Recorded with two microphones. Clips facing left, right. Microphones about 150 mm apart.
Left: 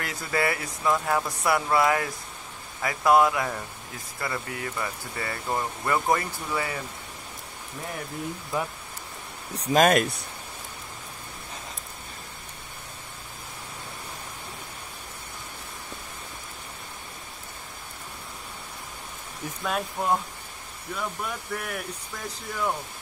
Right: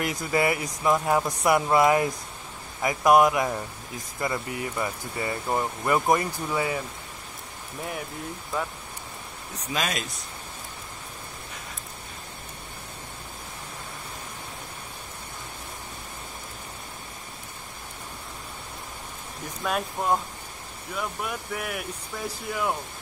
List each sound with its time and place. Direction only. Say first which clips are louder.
0.0 s speech: right 3 dB; 20° right (ahead or behind)
9.6 s speech: left 10 dB; 45° left (ahead or behind); by 10.2 s 60° left (ahead or behind)
19.6 s speech: right 1 dB; centre (ahead or behind)